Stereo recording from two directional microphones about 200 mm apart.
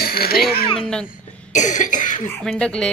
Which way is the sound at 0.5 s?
30° left (ahead or behind).